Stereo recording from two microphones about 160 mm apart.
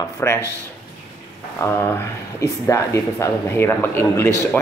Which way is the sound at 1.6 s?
20° left (ahead or behind).